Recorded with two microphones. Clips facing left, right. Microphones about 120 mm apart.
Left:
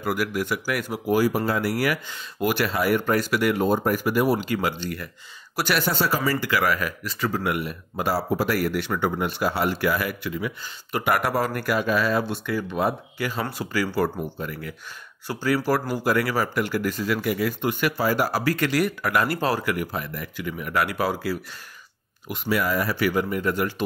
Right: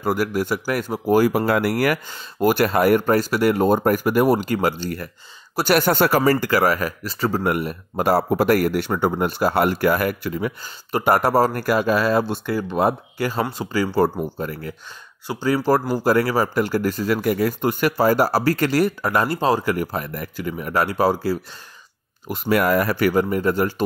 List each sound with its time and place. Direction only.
0.0 s speech: 35° right (ahead or behind)
1.3 s speech: 65° right (ahead or behind); by 5.1 s 40° right (ahead or behind)
5.8 s speech: 55° right (ahead or behind)
6.3 s speech: 40° right (ahead or behind)
13.5 s speech: 25° right (ahead or behind)
15.2 s speech: 25° right (ahead or behind)
19.6 s speech: 35° right (ahead or behind)
22.5 s speech: 55° right (ahead or behind); by 23.7 s 35° right (ahead or behind)